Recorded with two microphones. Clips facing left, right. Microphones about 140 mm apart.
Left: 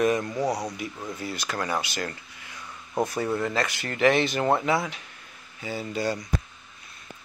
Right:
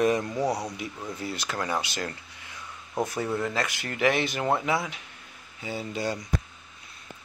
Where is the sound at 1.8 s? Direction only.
20° right (ahead or behind).